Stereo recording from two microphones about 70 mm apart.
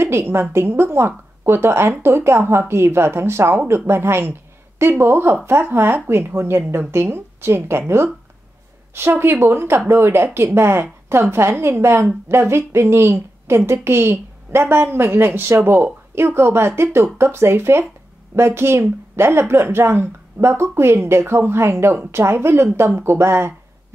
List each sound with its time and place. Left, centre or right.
0.0 s speech: right
9.2 s speech: right